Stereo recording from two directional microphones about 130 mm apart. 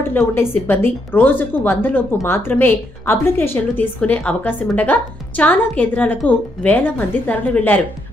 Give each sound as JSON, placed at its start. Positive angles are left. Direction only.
{"t": 0.1, "sound": "a woman's voice", "side_deg": 20}